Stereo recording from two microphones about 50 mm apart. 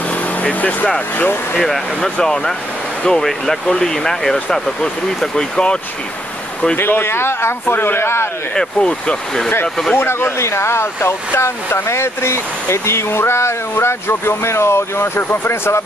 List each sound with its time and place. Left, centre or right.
0.4 s speech: left
1.6 s speech: centre
6.8 s a man's voice: left
8.5 s speech: centre
9.9 s a man's voice: left
10.4 s speech: left